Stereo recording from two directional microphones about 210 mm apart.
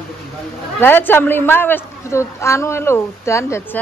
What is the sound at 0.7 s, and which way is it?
A man's voice, 10° left (ahead or behind).